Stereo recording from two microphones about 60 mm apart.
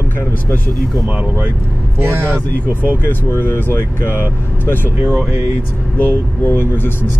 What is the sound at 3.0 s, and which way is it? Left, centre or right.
Speech, left.